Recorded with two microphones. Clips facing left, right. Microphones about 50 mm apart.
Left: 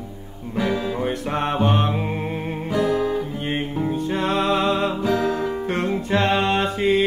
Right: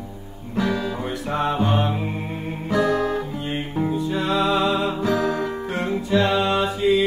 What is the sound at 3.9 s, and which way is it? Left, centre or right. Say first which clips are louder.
Music: even; left.